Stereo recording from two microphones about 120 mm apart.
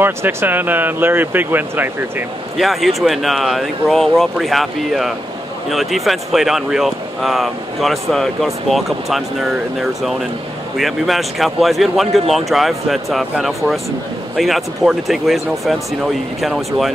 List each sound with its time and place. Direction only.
0.0 s speech: 20° right (ahead or behind)
2.6 s speech: centre (ahead or behind)